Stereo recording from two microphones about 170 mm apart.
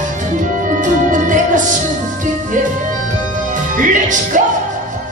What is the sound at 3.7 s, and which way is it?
Music, 50° right (ahead or behind).